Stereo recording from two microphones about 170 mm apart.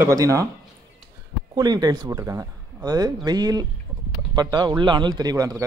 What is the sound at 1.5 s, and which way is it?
Speech, 25° right (ahead or behind).